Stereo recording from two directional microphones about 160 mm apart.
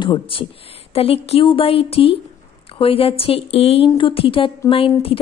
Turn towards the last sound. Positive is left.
turn(degrees=35)  # may be behind; listen again after turning